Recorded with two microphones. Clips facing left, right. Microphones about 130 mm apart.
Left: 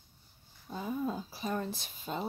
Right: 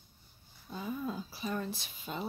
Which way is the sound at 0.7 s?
45° left (ahead or behind).